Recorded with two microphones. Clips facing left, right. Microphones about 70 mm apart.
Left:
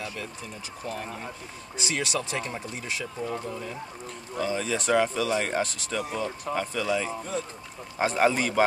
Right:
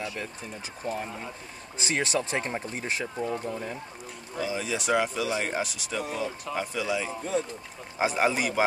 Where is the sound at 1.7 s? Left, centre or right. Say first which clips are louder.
Right 2 dB; right.